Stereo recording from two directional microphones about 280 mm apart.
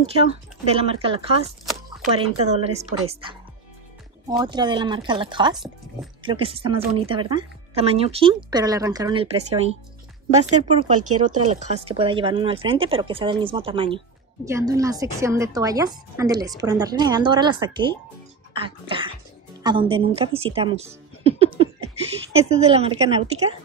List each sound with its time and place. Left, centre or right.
0.0 s speech: right
4.3 s a woman's voice: centre